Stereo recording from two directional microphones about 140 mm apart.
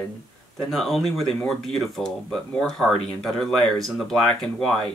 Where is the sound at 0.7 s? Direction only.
Centre (ahead or behind).